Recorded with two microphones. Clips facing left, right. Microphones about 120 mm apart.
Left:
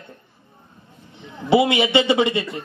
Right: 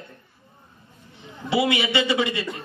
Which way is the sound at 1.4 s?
25° left (ahead or behind).